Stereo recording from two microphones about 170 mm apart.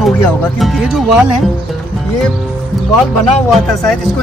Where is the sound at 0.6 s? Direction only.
Centre (ahead or behind).